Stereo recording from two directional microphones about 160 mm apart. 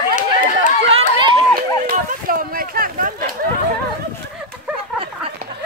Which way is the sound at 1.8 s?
65° right (ahead or behind).